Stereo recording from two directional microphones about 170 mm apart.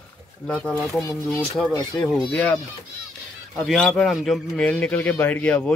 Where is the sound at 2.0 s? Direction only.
Centre (ahead or behind).